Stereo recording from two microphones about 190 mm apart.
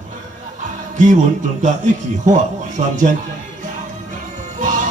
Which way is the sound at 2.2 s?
40° right (ahead or behind).